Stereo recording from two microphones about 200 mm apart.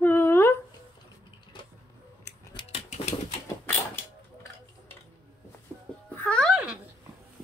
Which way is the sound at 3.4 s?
10° left (ahead or behind).